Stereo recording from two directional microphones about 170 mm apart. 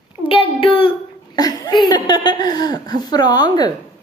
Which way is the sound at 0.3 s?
30° left (ahead or behind).